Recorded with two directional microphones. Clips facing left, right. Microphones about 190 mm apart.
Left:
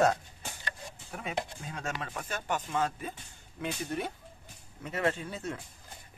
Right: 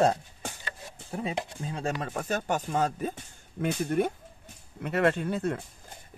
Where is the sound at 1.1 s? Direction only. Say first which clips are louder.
Right 4 dB; 30° right (ahead or behind).